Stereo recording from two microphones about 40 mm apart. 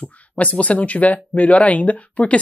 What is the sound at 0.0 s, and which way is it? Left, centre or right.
Speech, left.